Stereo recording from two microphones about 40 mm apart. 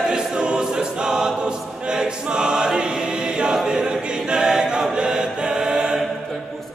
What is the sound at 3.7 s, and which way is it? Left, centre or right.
A capella, centre.